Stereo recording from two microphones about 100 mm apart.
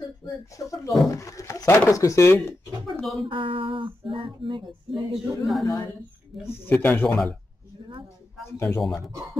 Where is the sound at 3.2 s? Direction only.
60° right (ahead or behind).